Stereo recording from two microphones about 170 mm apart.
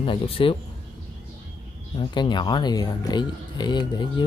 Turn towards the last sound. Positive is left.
turn(degrees=25)  # may be behind; listen again after turning